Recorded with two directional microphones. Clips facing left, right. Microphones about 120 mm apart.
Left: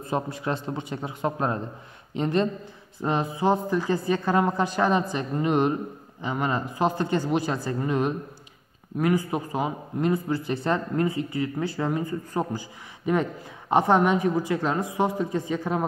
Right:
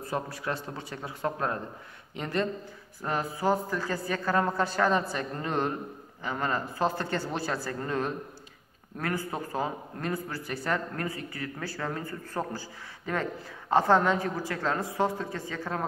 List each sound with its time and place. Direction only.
0.0 s a woman's voice: 20° left (ahead or behind)